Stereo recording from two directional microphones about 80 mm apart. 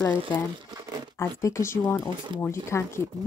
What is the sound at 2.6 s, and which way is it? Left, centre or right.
Speech, left.